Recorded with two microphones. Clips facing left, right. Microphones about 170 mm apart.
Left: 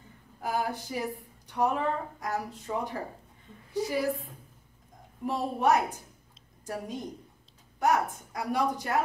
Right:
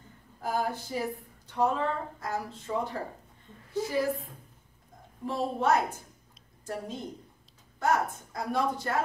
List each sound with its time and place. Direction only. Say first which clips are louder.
0.4 s speech: even; 15° left (ahead or behind)
5.2 s speech: left 1 dB; 15° left (ahead or behind)